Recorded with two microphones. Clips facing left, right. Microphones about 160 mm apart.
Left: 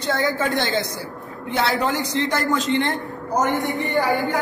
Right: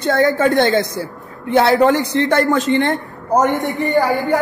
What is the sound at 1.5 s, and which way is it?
A man's voice, 60° right (ahead or behind).